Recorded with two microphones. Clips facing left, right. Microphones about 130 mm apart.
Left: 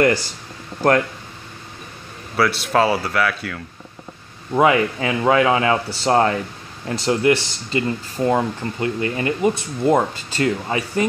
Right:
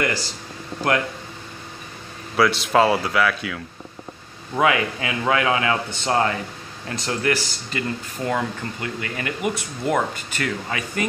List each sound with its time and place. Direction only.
0.0 s speech: 50° left (ahead or behind)
2.3 s speech: centre (ahead or behind)
4.6 s a man's voice: 30° left (ahead or behind)